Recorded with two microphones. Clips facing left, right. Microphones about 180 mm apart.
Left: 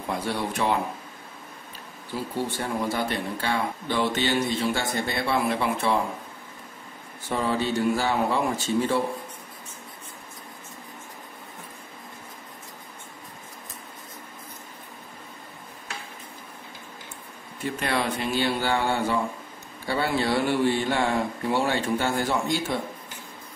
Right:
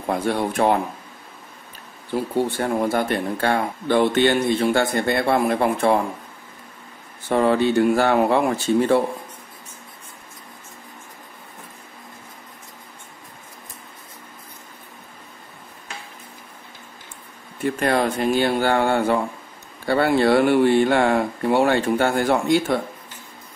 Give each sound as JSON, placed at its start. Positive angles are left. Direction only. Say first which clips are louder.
{"t": 0.1, "sound": "speech", "louder": "right 6 dB", "side_deg": -55}
{"t": 2.1, "sound": "speech", "louder": "right 7 dB", "side_deg": -55}
{"t": 7.2, "sound": "speech", "louder": "right 8 dB", "side_deg": -60}
{"t": 17.6, "sound": "speech", "louder": "right 7 dB", "side_deg": -50}